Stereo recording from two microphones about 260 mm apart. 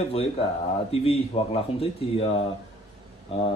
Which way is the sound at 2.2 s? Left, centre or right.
Left.